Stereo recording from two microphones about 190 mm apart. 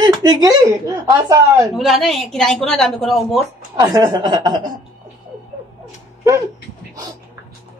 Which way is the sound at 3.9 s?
20° right (ahead or behind).